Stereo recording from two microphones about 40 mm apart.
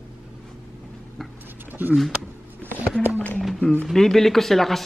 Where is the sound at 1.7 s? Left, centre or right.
Right.